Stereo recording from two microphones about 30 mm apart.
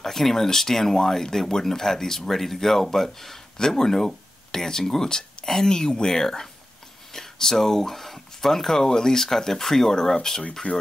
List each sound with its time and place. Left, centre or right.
0.0 s speech: centre
3.5 s speech: centre
10.6 s speech: left